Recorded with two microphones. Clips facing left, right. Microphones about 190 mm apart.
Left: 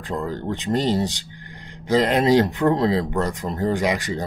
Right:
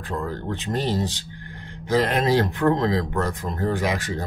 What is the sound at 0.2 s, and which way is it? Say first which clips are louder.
Speech: left 2 dB; 15° left (ahead or behind).